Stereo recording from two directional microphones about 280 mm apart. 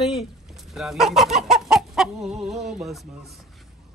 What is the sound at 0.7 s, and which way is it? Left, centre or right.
Chicken, centre.